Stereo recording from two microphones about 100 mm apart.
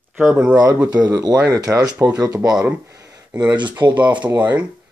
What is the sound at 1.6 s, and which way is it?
Speech, 35° right (ahead or behind).